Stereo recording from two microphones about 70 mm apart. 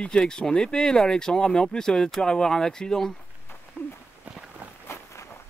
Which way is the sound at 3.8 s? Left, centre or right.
Centre.